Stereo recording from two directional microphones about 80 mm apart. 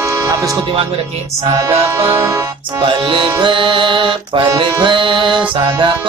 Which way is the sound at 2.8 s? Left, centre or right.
Right.